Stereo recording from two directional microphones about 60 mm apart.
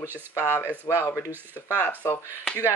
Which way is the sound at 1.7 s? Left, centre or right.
Left.